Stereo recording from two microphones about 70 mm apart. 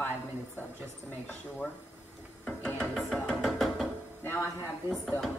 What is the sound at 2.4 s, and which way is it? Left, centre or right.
Ratchet, centre.